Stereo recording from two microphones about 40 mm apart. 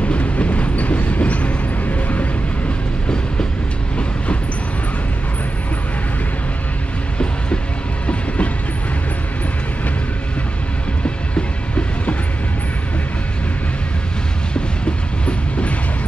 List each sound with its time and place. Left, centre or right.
0.0 s train: left
11.3 s train: left